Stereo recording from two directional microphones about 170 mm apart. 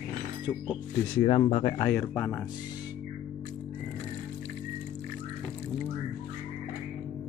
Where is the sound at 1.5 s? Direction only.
30° left (ahead or behind).